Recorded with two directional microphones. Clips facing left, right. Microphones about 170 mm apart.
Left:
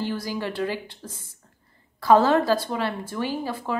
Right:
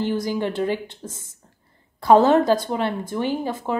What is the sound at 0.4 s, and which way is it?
Speech, 20° right (ahead or behind).